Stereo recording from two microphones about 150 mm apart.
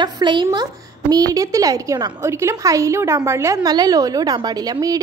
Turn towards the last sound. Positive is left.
turn(degrees=-25)  # may be behind; listen again after turning